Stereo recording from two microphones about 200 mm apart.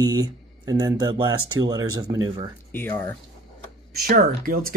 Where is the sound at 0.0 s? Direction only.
20° right (ahead or behind).